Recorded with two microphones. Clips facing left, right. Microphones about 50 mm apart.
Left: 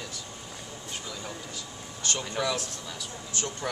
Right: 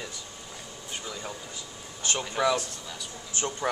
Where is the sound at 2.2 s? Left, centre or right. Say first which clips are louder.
Right 5 dB; centre.